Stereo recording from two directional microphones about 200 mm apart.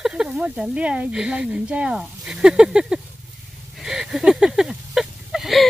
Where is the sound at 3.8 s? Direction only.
Centre (ahead or behind).